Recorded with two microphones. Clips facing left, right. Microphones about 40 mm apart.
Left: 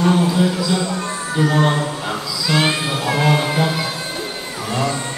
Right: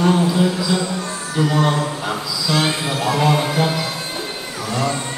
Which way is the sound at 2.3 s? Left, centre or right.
Left.